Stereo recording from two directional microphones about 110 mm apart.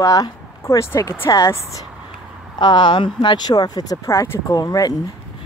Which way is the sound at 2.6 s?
45° left (ahead or behind).